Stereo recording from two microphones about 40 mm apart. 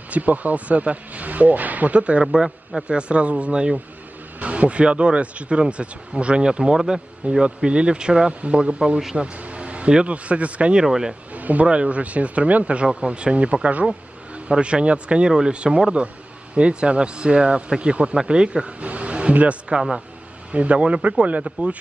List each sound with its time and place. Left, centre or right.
0.1 s speech: right
2.3 s a man's voice: centre
2.9 s speech: right
7.4 s speech: right
9.1 s a sound: right
10.0 s speech: right
10.8 s speech: centre
11.3 s speech: right
18.8 s speech: right